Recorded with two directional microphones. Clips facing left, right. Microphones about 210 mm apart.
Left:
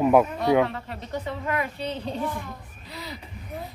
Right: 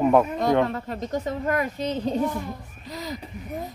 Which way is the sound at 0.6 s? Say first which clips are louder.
Right 5 dB; 40° right (ahead or behind).